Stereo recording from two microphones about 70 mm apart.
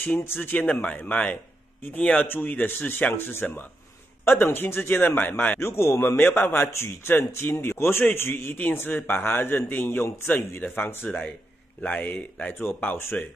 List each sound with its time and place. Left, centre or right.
0.4 s speech: left
5.6 s a man's voice: left